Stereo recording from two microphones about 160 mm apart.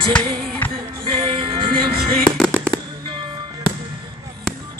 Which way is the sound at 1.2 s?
30° right (ahead or behind).